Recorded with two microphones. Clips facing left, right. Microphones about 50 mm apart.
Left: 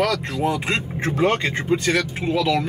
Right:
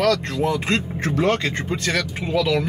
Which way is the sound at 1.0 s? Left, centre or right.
Left.